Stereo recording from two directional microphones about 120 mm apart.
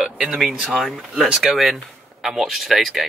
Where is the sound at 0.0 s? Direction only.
5° right (ahead or behind).